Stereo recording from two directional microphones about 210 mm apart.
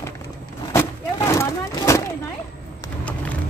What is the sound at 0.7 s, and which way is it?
Vehicle, 15° left (ahead or behind).